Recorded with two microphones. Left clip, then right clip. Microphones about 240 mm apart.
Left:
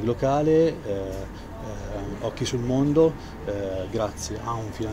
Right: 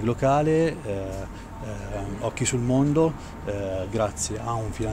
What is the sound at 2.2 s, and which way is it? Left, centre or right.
Speech, right.